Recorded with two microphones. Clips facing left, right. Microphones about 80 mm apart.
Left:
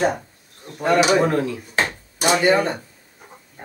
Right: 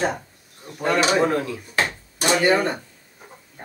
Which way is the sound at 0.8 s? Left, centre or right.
Centre.